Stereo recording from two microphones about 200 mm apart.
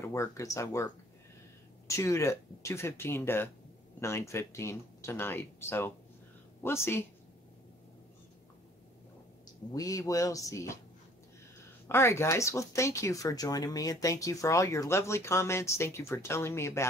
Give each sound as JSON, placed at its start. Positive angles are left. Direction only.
{"t": 0.0, "sound": "speech", "side_deg": 15}
{"t": 1.9, "sound": "speech", "side_deg": 15}
{"t": 9.7, "sound": "speech", "side_deg": 15}
{"t": 11.9, "sound": "speech", "side_deg": 15}